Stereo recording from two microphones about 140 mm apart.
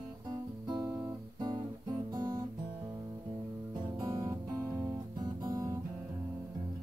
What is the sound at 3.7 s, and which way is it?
Music, 25° right (ahead or behind).